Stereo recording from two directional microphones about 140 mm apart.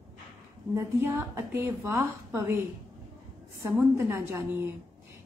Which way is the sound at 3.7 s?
15° right (ahead or behind).